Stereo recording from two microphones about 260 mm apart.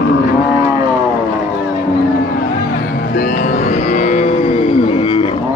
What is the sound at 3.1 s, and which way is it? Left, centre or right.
Music, left.